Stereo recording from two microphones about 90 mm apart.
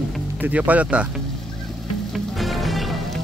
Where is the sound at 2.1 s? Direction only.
Centre (ahead or behind).